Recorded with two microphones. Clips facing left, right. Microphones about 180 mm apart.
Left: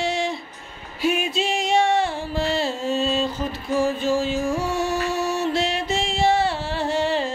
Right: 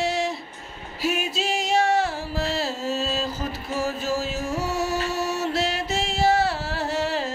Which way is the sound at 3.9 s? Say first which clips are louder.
Left 5 dB; 5° right (ahead or behind).